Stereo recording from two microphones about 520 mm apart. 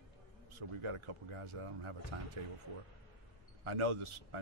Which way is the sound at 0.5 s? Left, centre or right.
Right.